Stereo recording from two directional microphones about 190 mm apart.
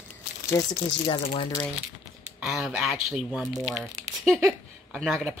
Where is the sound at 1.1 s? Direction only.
30° left (ahead or behind).